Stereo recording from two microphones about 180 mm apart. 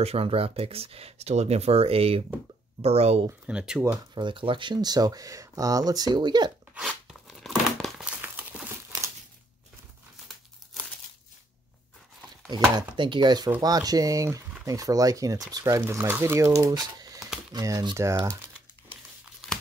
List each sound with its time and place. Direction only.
0.0 s speech: 35° right (ahead or behind)
3.4 s speech: 5° right (ahead or behind)
3.8 s speech: 20° right (ahead or behind)
6.9 s tearing: centre (ahead or behind)
12.4 s chopping: 25° right (ahead or behind)
13.6 s speech: 20° right (ahead or behind)